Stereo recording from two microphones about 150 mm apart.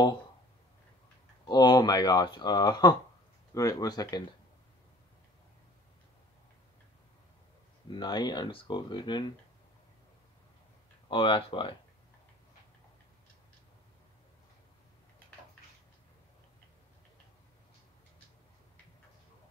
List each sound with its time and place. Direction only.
1.4 s speech: 30° left (ahead or behind)
7.9 s speech: 30° left (ahead or behind)
11.1 s speech: 35° left (ahead or behind)